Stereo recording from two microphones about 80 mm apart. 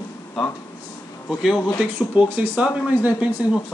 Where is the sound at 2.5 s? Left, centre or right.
Centre.